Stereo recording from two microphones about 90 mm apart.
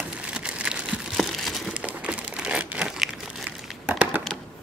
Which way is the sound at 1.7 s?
15° right (ahead or behind).